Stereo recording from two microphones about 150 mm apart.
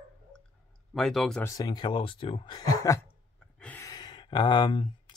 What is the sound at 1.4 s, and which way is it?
Speech, 25° left (ahead or behind).